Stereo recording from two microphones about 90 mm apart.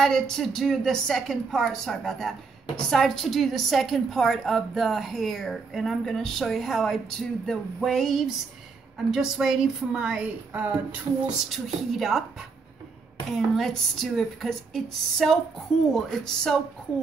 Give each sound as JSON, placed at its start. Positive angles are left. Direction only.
{"t": 0.0, "sound": "a woman's voice", "side_deg": 5}
{"t": 11.4, "sound": "a woman's voice", "side_deg": 0}
{"t": 13.3, "sound": "a woman's voice", "side_deg": 0}